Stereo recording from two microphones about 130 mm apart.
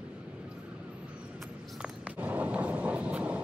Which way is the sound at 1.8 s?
10° right (ahead or behind).